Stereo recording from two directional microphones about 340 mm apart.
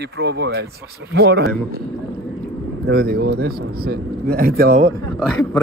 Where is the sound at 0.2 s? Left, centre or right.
Right.